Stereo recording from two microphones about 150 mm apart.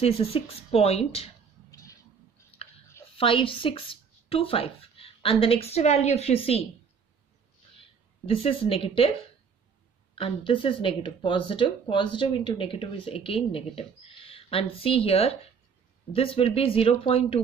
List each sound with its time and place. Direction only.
0.0 s speech: 40° left (ahead or behind)
1.7 s a sound: 20° left (ahead or behind)
3.2 s speech: 35° left (ahead or behind)
8.3 s speech: 35° left (ahead or behind)
10.1 s speech: 35° left (ahead or behind)